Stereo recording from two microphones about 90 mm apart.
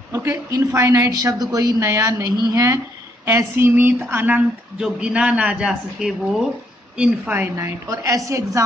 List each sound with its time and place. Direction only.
0.1 s speech: 25° right (ahead or behind)
0.5 s a woman's voice: 40° right (ahead or behind)
3.3 s a sound: 30° right (ahead or behind)
4.7 s a man's voice: 10° right (ahead or behind)
7.5 s a woman's voice: 30° right (ahead or behind)